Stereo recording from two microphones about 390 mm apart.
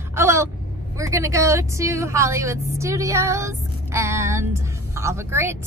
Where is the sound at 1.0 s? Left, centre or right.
Centre.